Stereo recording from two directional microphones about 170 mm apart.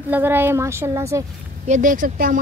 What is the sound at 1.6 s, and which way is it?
Speech, 45° right (ahead or behind).